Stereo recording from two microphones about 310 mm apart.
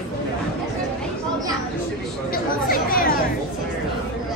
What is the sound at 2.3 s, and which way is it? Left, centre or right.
Chatter, left.